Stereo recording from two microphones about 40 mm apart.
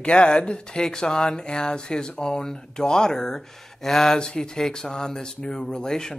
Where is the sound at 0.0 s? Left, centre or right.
Left.